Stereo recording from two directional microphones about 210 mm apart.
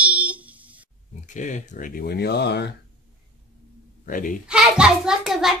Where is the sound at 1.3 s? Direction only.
35° left (ahead or behind); by 2.7 s 55° left (ahead or behind).